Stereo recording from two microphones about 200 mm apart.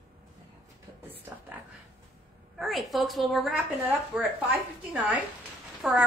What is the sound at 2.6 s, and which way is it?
A woman's voice, centre (ahead or behind).